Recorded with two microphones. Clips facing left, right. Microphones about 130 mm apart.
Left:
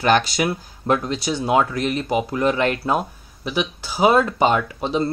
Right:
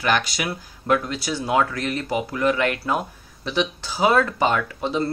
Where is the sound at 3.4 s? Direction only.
10° left (ahead or behind).